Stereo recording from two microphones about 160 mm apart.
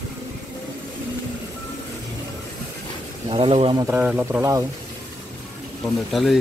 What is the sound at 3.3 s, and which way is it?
Speech, 35° right (ahead or behind).